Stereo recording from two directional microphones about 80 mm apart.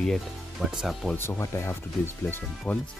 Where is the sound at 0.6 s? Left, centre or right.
Centre.